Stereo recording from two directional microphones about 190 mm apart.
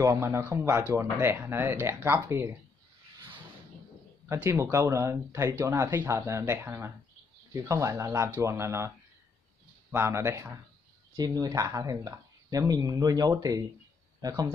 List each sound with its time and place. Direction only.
0.0 s speech: 15° right (ahead or behind)
4.3 s speech: 15° right (ahead or behind)